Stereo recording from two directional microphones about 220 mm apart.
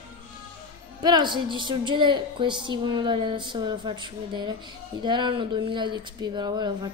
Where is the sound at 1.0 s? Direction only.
20° right (ahead or behind).